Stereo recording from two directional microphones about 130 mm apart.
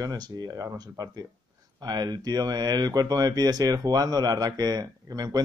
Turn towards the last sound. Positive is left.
turn(degrees=-30)  # may be behind; listen again after turning